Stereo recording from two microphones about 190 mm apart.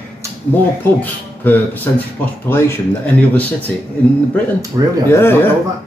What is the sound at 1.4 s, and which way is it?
Speech, 10° left (ahead or behind).